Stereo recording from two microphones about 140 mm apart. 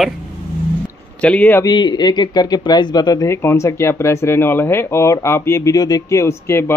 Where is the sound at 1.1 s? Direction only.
10° left (ahead or behind).